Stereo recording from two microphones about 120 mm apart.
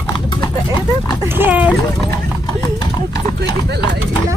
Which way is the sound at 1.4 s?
15° right (ahead or behind).